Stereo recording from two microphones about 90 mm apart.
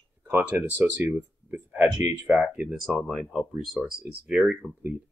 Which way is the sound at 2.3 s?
10° right (ahead or behind).